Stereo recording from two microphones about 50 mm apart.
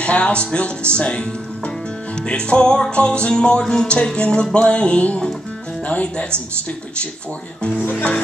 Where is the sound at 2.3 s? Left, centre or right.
Centre.